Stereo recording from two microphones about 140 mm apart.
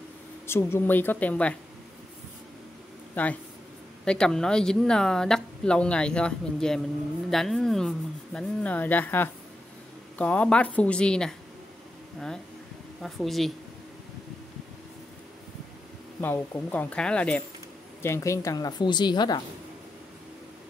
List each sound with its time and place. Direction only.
0.5 s speech: 20° left (ahead or behind)
3.2 s speech: 10° left (ahead or behind)
13.0 s speech: centre (ahead or behind)
16.2 s speech: 10° left (ahead or behind)
18.0 s a woman's voice: 20° left (ahead or behind)